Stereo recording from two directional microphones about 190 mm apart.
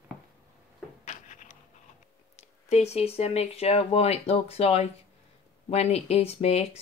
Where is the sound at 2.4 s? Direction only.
35° left (ahead or behind).